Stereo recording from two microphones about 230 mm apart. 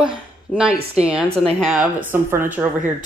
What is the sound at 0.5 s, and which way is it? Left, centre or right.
A woman's voice, centre.